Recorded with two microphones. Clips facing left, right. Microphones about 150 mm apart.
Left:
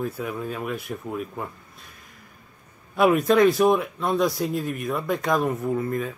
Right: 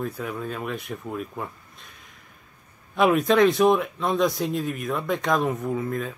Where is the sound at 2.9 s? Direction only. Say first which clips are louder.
Left 1 dB; centre (ahead or behind).